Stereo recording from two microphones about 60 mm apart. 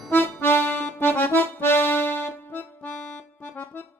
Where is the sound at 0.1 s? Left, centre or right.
Left.